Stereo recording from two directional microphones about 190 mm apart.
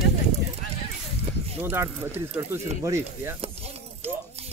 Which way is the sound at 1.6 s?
15° right (ahead or behind).